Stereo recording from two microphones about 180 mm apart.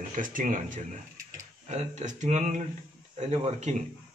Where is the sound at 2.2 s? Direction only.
40° right (ahead or behind).